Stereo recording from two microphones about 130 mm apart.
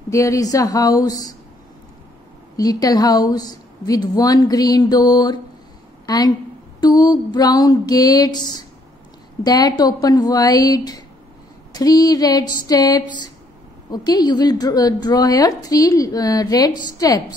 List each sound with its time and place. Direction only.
0.1 s a woman's voice: 25° left (ahead or behind)
2.5 s a woman's voice: 30° left (ahead or behind)